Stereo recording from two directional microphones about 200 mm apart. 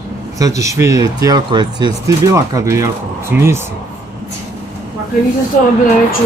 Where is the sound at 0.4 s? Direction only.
15° right (ahead or behind).